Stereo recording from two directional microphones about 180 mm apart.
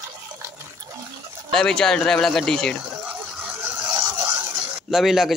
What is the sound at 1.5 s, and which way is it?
A man's voice, 5° left (ahead or behind).